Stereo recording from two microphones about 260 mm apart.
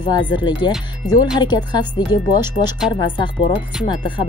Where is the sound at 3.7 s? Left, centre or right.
Centre.